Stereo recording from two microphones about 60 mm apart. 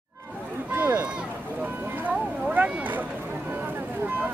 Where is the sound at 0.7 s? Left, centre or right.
Right.